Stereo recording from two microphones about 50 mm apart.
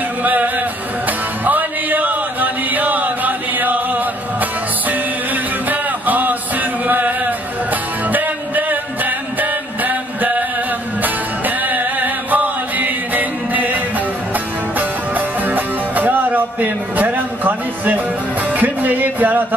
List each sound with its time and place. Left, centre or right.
0.2 s music: right